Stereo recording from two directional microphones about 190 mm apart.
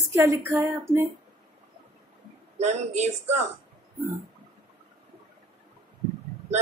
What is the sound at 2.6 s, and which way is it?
Speech, 35° right (ahead or behind).